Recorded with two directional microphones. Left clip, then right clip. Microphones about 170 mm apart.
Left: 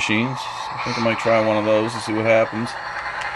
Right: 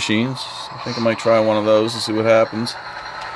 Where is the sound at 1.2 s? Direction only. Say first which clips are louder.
Right 3 dB; 10° right (ahead or behind).